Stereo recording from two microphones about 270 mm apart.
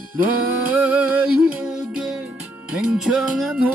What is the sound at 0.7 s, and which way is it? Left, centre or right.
Music, centre.